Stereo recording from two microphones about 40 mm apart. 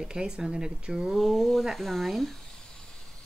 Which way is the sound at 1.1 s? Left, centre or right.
Centre.